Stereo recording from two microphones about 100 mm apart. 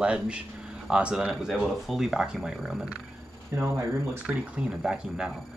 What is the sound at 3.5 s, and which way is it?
Speech, 25° right (ahead or behind).